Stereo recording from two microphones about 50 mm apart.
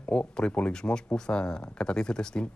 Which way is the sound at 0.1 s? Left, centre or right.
Centre.